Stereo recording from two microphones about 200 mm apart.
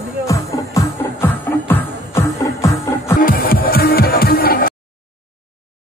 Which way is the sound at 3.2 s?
45° left (ahead or behind).